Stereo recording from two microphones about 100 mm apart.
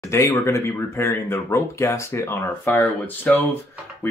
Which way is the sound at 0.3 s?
30° left (ahead or behind).